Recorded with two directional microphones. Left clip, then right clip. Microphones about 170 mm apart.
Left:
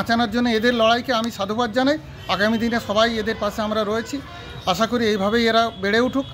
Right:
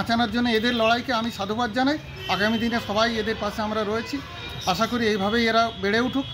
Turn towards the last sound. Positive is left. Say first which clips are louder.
# left 4 dB
turn(degrees=40)  # may be behind; listen again after turning